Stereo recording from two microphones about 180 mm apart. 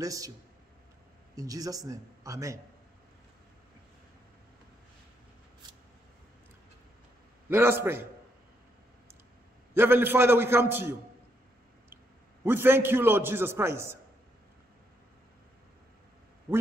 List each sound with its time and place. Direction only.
0.0 s a man's voice: 20° right (ahead or behind)
1.3 s a man's voice: 20° right (ahead or behind)
7.4 s a man's voice: 10° right (ahead or behind)
9.8 s a man's voice: 10° right (ahead or behind)
12.4 s a man's voice: 10° right (ahead or behind)
16.5 s a man's voice: 10° right (ahead or behind)